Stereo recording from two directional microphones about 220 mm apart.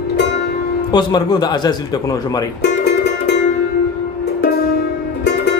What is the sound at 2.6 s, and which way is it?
Music, 50° left (ahead or behind).